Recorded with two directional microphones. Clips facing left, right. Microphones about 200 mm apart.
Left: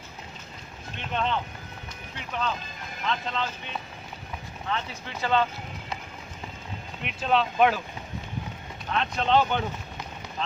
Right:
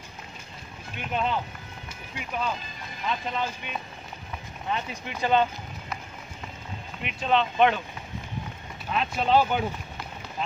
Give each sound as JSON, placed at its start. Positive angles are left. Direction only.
{"t": 0.9, "sound": "speech", "side_deg": -10}
{"t": 7.0, "sound": "speech", "side_deg": 0}
{"t": 8.9, "sound": "speech", "side_deg": -5}